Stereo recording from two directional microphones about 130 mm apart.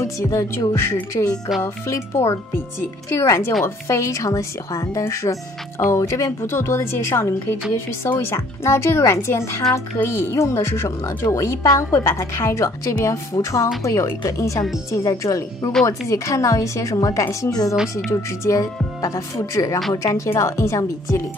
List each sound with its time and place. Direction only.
0.0 s a woman's voice: 25° left (ahead or behind)
1.6 s a woman's voice: 20° left (ahead or behind)